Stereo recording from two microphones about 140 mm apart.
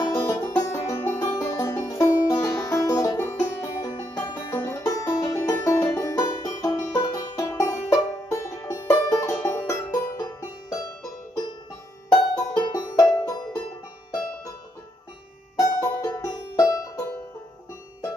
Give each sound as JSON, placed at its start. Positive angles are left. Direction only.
{"t": 0.0, "sound": "music", "side_deg": 20}
{"t": 12.1, "sound": "music", "side_deg": 30}
{"t": 15.6, "sound": "music", "side_deg": 25}